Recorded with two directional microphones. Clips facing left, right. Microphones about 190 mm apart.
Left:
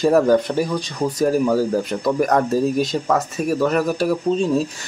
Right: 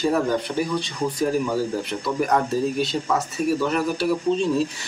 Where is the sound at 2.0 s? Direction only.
45° left (ahead or behind).